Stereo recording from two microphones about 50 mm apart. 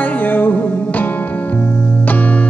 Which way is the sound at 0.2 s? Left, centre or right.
Left.